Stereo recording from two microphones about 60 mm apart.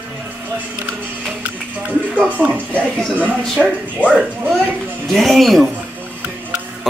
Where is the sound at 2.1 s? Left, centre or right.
Right.